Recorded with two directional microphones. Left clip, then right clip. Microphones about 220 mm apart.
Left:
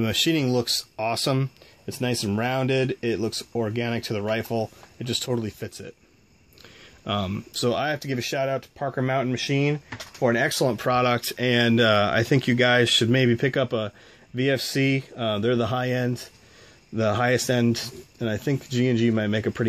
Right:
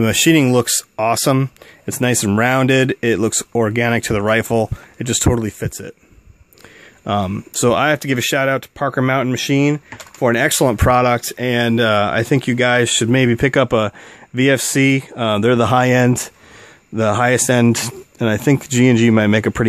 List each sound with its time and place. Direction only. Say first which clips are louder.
0.0 s speech: right 9 dB; 35° right (ahead or behind)
7.1 s speech: right 8 dB; 25° right (ahead or behind)
7.6 s speech: right 10 dB; 40° right (ahead or behind)
16.9 s speech: right 7 dB; 25° right (ahead or behind)